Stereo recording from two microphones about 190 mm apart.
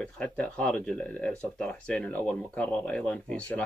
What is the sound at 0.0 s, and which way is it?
Speech, 5° left (ahead or behind).